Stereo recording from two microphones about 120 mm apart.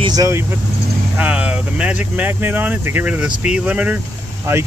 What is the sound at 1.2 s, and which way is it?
Speech, 10° right (ahead or behind).